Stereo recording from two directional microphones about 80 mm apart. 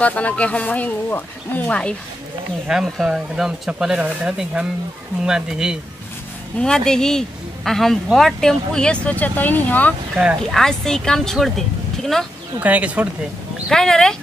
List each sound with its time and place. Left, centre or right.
0.0 s speech: centre
2.7 s speech: centre
6.6 s speech: centre
10.4 s speech: centre
12.5 s speech: centre
13.7 s speech: centre